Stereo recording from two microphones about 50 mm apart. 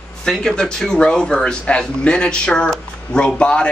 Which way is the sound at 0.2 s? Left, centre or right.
Centre.